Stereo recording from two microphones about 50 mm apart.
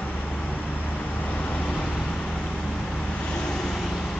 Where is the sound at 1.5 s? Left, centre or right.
Left.